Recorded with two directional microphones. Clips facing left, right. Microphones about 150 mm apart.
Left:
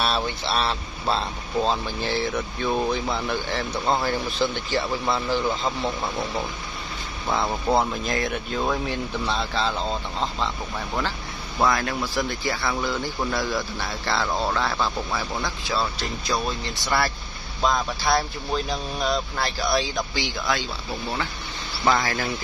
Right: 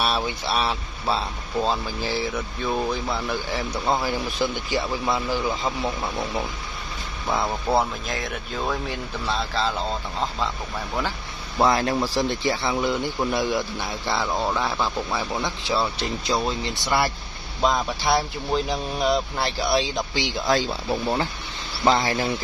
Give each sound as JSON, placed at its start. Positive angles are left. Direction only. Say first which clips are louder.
{"t": 0.0, "sound": "speech", "louder": "even", "side_deg": -10}
{"t": 11.5, "sound": "speech", "louder": "right 3 dB", "side_deg": -30}
{"t": 21.8, "sound": "speech", "louder": "right 2 dB", "side_deg": -25}